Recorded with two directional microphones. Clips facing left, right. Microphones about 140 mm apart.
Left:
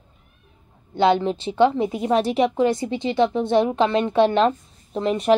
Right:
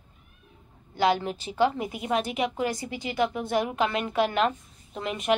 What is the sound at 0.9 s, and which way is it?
A woman's voice, 25° left (ahead or behind).